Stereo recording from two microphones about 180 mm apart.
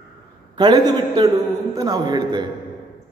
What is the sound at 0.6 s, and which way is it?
A man's voice, 25° right (ahead or behind).